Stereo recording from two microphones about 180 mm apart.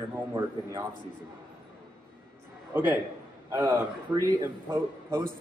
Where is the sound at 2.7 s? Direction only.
10° right (ahead or behind).